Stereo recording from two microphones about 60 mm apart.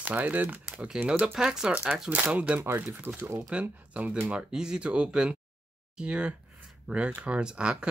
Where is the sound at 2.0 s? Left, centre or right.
Right.